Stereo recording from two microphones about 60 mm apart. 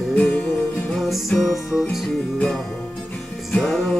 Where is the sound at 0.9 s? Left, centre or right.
Centre.